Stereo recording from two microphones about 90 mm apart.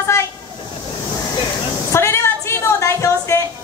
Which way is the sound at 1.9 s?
30° left (ahead or behind).